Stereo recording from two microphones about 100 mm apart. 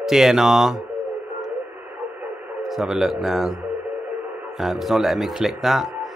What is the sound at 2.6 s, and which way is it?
Speech, 5° right (ahead or behind).